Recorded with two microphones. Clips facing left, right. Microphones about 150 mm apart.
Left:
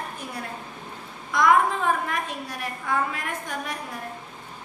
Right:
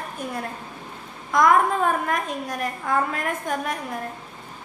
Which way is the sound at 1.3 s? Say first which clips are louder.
Right 2 dB; 45° right (ahead or behind).